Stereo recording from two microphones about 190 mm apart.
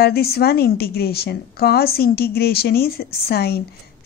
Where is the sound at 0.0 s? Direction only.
55° left (ahead or behind).